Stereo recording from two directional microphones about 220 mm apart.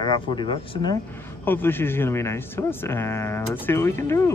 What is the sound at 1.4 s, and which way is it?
Speech, 10° left (ahead or behind).